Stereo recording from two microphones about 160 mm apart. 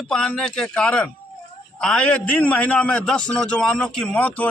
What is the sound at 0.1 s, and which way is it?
A man's voice, 5° left (ahead or behind).